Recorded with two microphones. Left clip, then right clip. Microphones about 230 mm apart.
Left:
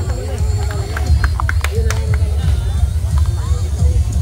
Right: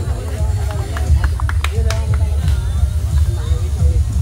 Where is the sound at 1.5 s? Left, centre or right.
Centre.